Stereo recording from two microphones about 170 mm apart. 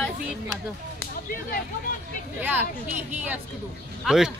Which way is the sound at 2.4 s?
10° right (ahead or behind).